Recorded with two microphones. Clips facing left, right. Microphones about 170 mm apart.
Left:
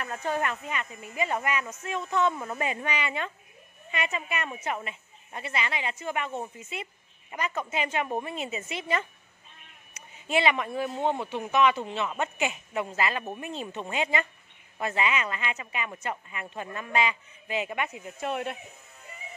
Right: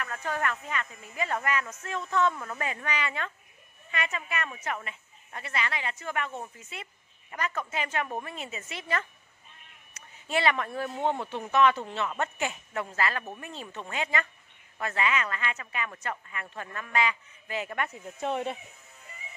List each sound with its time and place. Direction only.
0.0 s a woman's voice: 25° left (ahead or behind); by 18.6 s 5° left (ahead or behind)